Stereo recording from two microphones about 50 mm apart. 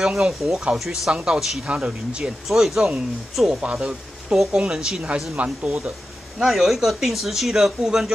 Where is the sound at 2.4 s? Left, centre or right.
Centre.